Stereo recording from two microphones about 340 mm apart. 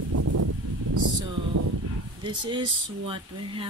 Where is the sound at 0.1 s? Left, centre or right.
Right.